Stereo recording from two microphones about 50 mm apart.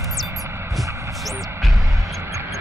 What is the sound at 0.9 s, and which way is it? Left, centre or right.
Music, right.